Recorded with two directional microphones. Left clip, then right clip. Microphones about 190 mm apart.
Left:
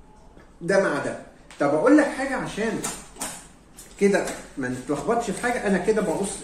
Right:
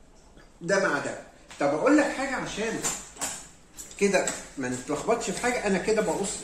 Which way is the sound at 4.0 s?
35° right (ahead or behind).